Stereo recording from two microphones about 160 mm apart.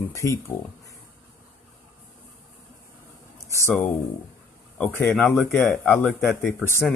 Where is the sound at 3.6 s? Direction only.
10° left (ahead or behind).